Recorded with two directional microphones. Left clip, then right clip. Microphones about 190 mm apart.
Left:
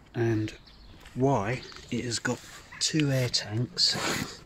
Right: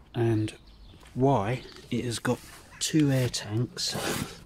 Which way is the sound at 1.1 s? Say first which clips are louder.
Right 1 dB; 15° right (ahead or behind).